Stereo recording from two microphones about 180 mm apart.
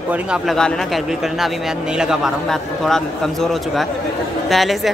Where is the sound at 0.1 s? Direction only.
5° right (ahead or behind).